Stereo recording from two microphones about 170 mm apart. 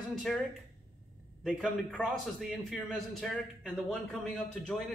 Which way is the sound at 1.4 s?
Centre (ahead or behind).